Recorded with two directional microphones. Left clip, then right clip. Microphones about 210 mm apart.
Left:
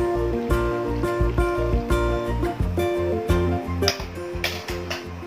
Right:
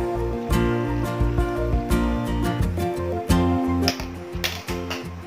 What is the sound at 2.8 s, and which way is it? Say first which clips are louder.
Music: left 3 dB; centre (ahead or behind).